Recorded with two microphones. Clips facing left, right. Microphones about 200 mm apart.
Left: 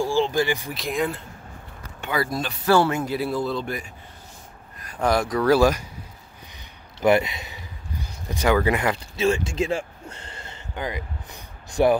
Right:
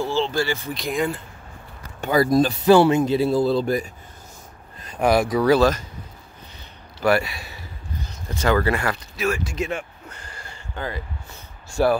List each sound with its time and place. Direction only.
0.0 s speech: 15° left (ahead or behind)
0.7 s speech: centre (ahead or behind)
2.0 s speech: 40° right (ahead or behind)
2.6 s speech: 20° right (ahead or behind); by 3.9 s 40° right (ahead or behind)
4.7 s a sound: 25° right (ahead or behind)
5.0 s speech: 10° right (ahead or behind)
5.6 s speech: 10° left (ahead or behind)
7.0 s speech: 20° left (ahead or behind)